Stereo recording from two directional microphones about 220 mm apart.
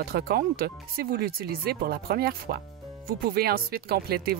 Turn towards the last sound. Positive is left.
turn(degrees=-45)  # may be behind; listen again after turning